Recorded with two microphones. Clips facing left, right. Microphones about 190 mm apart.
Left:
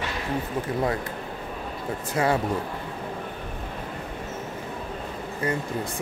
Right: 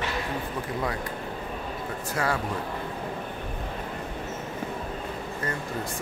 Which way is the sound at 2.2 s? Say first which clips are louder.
Left 5 dB; 20° left (ahead or behind).